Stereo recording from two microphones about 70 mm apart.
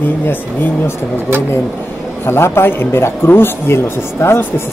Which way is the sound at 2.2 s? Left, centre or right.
Left.